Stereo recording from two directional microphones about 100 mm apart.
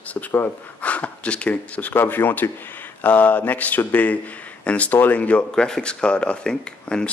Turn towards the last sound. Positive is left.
turn(degrees=10)  # may be behind; listen again after turning